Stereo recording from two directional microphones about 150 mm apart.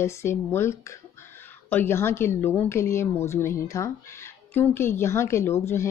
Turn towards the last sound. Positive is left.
turn(degrees=15)  # may be behind; listen again after turning